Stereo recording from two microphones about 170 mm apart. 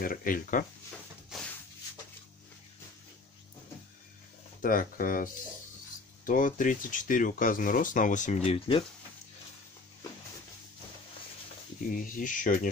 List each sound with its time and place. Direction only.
0.0 s speech: 55° left (ahead or behind)
4.6 s speech: 55° left (ahead or behind); by 8.8 s 30° left (ahead or behind)
11.9 s speech: 50° left (ahead or behind)